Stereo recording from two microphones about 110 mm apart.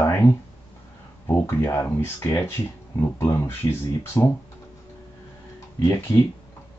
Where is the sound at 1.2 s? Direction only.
25° left (ahead or behind).